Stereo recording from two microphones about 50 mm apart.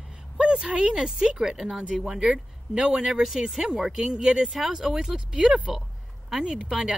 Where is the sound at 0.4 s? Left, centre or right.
Centre.